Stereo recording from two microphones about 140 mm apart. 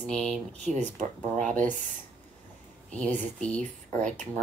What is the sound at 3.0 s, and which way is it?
Speech, 5° left (ahead or behind).